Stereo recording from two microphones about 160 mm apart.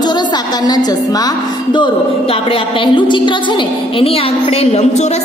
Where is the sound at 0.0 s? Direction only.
25° left (ahead or behind).